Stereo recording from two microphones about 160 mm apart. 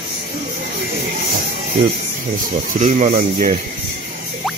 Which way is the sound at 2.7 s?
50° right (ahead or behind).